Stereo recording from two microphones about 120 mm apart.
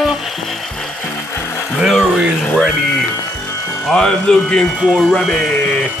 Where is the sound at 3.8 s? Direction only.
5° left (ahead or behind).